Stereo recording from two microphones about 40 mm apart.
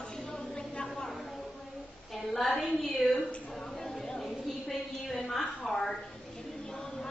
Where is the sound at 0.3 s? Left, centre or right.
Left.